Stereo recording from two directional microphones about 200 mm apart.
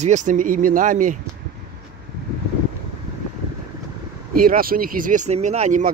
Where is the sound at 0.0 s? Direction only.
35° right (ahead or behind).